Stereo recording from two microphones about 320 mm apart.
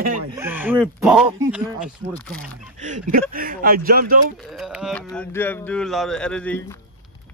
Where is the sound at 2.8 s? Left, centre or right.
Right.